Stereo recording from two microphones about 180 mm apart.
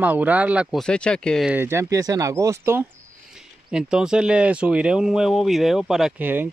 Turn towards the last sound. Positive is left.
turn(degrees=-10)  # may be behind; listen again after turning